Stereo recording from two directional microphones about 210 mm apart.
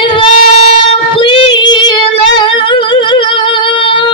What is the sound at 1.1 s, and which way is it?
Female singing, 25° left (ahead or behind).